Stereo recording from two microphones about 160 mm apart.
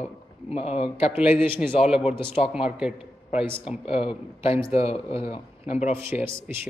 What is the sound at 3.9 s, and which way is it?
Speech, 35° left (ahead or behind).